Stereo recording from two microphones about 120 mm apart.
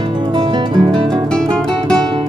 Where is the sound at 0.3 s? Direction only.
40° right (ahead or behind).